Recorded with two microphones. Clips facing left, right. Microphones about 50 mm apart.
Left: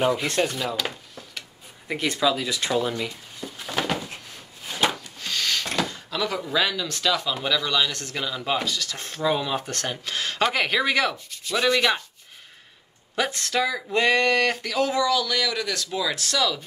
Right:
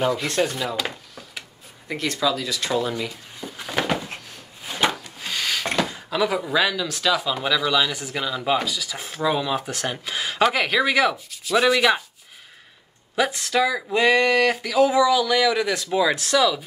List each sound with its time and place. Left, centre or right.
0.0 s speech: centre
1.9 s speech: centre
2.7 s speech: centre
3.3 s a sound: centre
5.8 s speech: centre
13.1 s speech: centre